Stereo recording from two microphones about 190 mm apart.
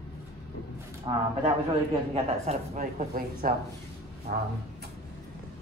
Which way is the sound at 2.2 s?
35° right (ahead or behind).